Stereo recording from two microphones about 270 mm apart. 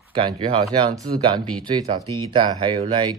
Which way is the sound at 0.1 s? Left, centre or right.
Centre.